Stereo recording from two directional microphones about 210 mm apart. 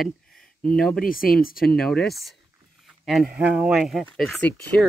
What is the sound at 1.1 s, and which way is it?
Speech, 45° left (ahead or behind).